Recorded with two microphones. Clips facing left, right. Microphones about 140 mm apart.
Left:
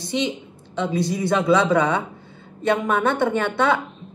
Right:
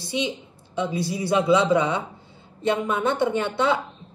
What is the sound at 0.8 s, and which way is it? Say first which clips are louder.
A woman's voice: left 4 dB; 55° left (ahead or behind).